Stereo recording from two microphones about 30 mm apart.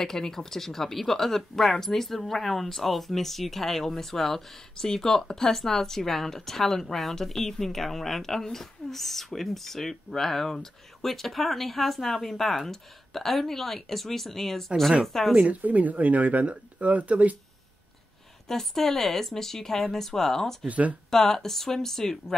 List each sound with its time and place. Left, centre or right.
0.0 s speech: centre
15.3 s speech: right
18.5 s speech: centre
20.6 s speech: right
21.1 s speech: centre